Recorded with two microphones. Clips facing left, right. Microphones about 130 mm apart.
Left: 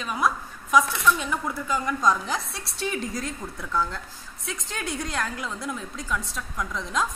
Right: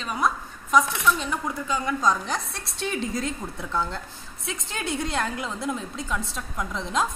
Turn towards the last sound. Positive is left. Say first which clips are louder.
# right 1 dB
turn(degrees=-30)  # may be behind; listen again after turning